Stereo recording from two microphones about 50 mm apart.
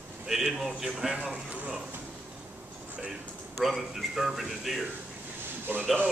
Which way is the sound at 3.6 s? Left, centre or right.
Centre.